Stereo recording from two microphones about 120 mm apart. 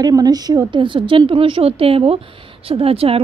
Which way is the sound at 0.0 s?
30° right (ahead or behind).